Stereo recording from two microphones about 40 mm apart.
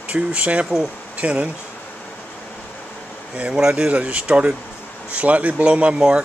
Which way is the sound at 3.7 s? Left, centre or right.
Right.